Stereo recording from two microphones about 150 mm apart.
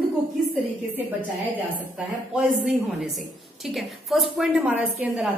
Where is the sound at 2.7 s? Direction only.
Centre (ahead or behind).